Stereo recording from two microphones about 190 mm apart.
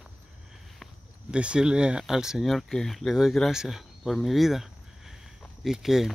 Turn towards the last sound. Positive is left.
turn(degrees=0)  # may be behind; listen again after turning